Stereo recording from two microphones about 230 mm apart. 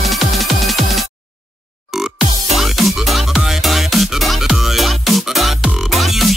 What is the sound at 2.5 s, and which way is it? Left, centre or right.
Music, centre.